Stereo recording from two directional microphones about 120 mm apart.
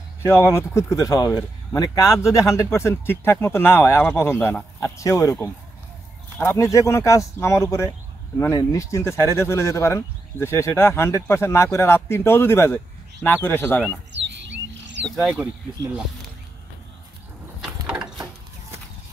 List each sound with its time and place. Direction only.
0.2 s speech: 20° left (ahead or behind)
15.0 s speech: centre (ahead or behind)
17.8 s mechanisms: 5° right (ahead or behind)